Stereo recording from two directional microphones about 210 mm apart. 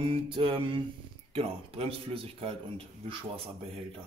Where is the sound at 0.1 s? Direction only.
25° right (ahead or behind).